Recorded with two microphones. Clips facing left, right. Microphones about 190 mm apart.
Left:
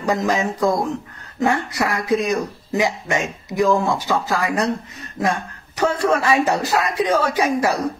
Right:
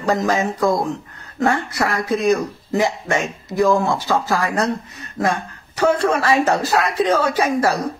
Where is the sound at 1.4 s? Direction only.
15° left (ahead or behind).